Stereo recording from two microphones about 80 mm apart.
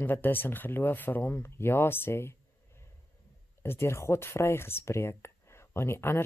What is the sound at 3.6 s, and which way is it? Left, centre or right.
Speech, left.